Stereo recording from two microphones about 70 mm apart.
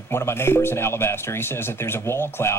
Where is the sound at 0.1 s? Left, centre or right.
Left.